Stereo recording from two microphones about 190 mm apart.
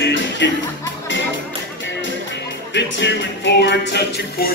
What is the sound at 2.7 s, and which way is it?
Music, 70° left (ahead or behind).